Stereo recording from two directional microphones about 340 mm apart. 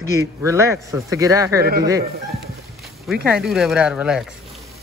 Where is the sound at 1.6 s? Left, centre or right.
Right.